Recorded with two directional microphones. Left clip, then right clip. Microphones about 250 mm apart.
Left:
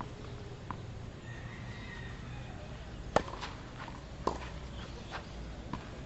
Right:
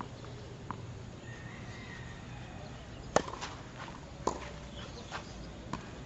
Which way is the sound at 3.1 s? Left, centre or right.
Centre.